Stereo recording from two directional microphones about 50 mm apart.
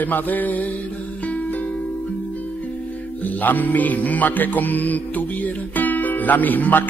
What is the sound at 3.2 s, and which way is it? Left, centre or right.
Music, left.